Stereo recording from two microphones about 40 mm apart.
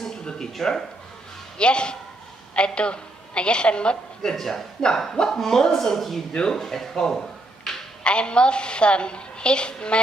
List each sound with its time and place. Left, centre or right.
0.2 s a sound: left
0.6 s a woman's voice: centre
1.6 s a man's voice: left
4.2 s a woman's voice: centre